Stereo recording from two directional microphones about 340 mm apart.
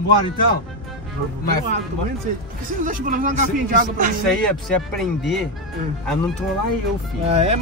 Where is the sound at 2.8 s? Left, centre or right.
Right.